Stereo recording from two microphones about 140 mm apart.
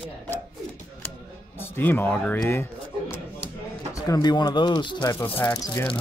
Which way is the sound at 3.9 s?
25° left (ahead or behind).